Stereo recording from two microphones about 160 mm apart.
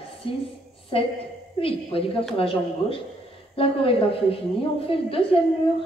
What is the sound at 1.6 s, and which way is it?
Speech, 35° left (ahead or behind).